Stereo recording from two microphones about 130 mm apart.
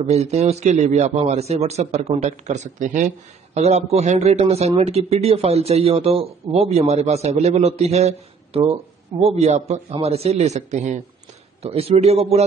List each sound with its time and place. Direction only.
0.0 s a man's voice: 55° right (ahead or behind); by 3.1 s 70° right (ahead or behind)
3.5 s a man's voice: 55° right (ahead or behind)
11.6 s a man's voice: 50° right (ahead or behind)